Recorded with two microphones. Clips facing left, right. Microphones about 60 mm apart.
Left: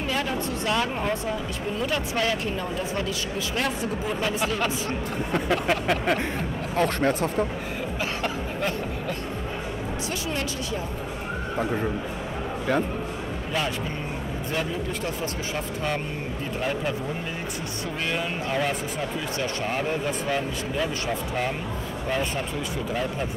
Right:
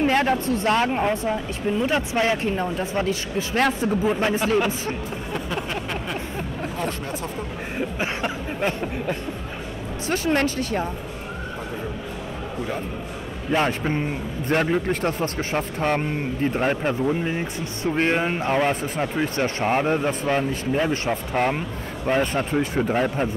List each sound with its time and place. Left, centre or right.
0.0 s speech: right
5.3 s a sound: left
6.8 s speech: left
8.0 s a sound: right
10.2 s a man's voice: right
13.5 s speech: right
14.5 s a man's voice: right
17.9 s a man's voice: right